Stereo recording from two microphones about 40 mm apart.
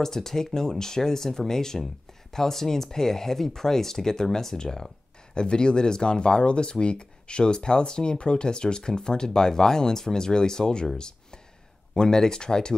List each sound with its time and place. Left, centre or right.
0.0 s speech: centre
11.9 s speech: centre